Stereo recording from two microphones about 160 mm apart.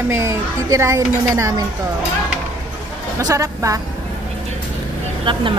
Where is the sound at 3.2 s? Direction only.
20° right (ahead or behind).